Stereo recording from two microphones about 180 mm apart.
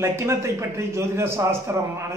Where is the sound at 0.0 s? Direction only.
15° right (ahead or behind).